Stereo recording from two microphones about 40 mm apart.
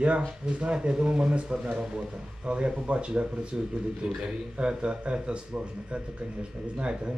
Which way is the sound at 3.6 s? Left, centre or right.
Centre.